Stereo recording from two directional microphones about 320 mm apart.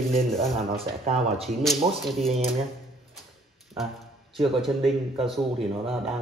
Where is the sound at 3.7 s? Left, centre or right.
Centre.